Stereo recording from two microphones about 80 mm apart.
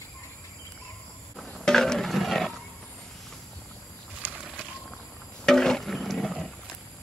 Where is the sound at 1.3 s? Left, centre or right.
Centre.